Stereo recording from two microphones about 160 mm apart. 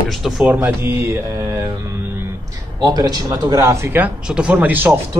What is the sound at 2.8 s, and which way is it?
Speech, 25° right (ahead or behind).